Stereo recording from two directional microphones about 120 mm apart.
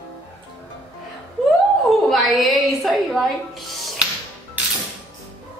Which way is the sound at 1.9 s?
Centre (ahead or behind).